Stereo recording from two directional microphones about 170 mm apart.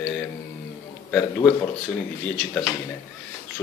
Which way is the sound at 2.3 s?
10° left (ahead or behind).